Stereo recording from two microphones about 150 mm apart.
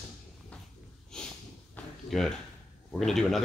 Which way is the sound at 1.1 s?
5° left (ahead or behind).